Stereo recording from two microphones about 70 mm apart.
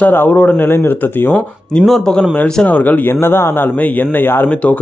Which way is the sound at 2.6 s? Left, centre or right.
Left.